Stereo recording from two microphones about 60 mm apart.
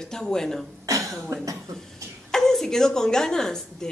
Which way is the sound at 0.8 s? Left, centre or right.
Right.